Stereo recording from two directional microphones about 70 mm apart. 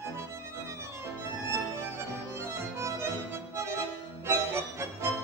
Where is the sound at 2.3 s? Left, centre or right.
Right.